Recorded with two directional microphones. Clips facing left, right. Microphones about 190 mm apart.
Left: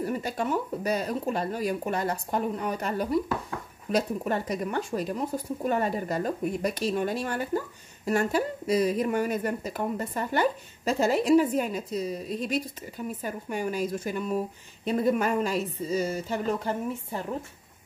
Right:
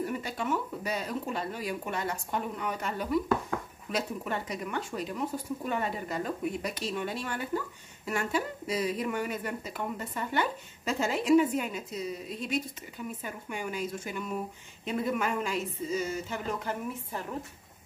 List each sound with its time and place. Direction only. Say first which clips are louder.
0.0 s speech: left 4 dB; 40° left (ahead or behind)